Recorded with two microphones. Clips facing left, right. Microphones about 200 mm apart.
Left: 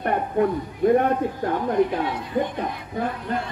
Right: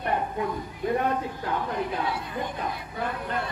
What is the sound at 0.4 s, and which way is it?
Speech, 60° left (ahead or behind).